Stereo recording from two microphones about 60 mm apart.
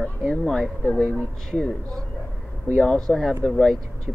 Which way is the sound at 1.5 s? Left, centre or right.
Centre.